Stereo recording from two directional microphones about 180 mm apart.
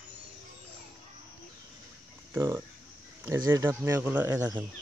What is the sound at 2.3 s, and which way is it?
Speech, 15° right (ahead or behind).